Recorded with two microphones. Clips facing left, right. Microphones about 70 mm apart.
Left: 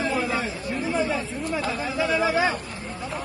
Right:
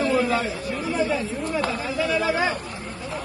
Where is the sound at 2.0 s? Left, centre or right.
Centre.